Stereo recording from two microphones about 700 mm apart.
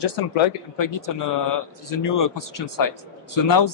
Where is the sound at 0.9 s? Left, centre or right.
Left.